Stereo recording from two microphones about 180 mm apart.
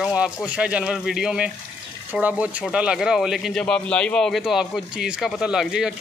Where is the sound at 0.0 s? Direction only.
5° right (ahead or behind).